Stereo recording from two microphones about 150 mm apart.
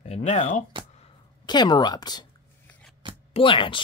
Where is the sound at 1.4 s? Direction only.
30° left (ahead or behind).